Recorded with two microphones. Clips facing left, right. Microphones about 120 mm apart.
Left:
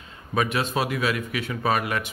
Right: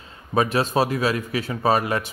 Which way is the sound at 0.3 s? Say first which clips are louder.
Right 4 dB; 35° right (ahead or behind).